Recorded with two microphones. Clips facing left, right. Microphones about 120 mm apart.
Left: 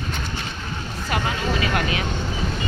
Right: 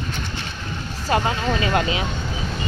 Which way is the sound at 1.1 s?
30° right (ahead or behind).